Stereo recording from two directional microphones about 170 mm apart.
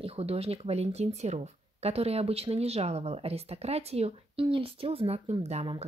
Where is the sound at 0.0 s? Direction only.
35° right (ahead or behind).